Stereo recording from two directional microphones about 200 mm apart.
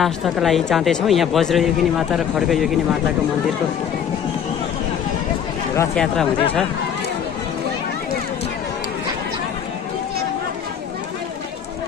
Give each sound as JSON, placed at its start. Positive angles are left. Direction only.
{"t": 0.0, "sound": "speech", "side_deg": 0}
{"t": 5.8, "sound": "speech", "side_deg": 5}